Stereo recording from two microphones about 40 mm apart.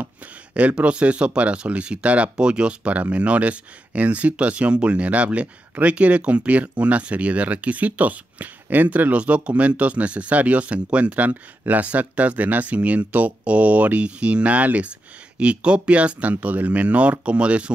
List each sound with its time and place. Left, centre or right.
0.6 s speech: right